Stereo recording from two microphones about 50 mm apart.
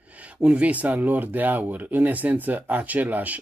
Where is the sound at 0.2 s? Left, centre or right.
Right.